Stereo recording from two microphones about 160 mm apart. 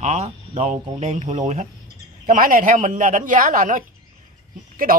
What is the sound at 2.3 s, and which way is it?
A man's voice, 55° right (ahead or behind).